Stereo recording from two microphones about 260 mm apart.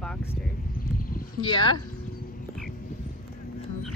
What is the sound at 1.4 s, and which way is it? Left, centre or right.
Speech, centre.